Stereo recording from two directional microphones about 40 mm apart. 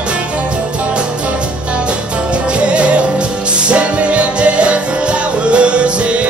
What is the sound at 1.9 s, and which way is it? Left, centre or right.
Music, right.